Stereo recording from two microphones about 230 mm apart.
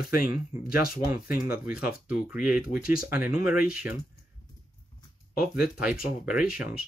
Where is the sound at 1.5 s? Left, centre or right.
Centre.